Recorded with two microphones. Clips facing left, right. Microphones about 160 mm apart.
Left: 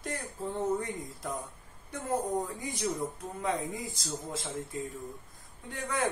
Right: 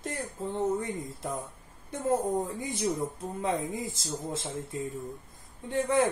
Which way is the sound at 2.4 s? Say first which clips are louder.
Right 3 dB; 25° right (ahead or behind).